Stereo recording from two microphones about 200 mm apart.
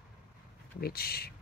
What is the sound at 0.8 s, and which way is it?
Speech, 50° left (ahead or behind).